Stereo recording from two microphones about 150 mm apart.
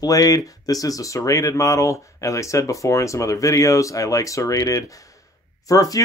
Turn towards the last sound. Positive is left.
turn(degrees=25)  # may be behind; listen again after turning